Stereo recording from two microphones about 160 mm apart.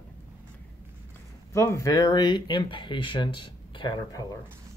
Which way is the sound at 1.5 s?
20° left (ahead or behind).